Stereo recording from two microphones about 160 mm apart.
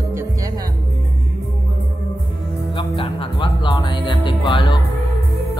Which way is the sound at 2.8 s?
30° left (ahead or behind).